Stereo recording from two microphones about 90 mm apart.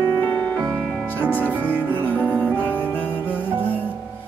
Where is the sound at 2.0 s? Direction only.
20° left (ahead or behind).